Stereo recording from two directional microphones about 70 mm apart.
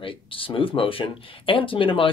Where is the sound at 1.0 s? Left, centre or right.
Left.